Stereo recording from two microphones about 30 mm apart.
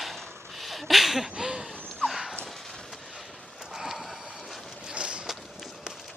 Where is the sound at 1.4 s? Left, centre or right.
Right.